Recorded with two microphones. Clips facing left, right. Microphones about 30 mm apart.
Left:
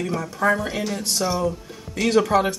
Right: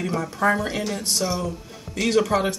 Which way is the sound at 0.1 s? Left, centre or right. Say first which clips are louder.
Even; centre.